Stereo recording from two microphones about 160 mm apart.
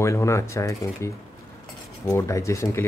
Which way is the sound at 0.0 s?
20° left (ahead or behind).